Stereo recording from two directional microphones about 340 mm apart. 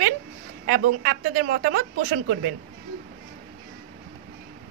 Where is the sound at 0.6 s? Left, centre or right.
Right.